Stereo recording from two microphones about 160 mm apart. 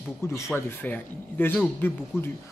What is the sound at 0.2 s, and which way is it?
Speech, 15° left (ahead or behind).